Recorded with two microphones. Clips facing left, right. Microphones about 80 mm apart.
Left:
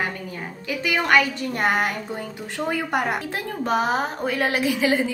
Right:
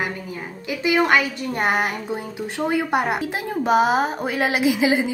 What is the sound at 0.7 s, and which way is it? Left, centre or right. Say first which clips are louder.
A woman's voice: right 3 dB; centre.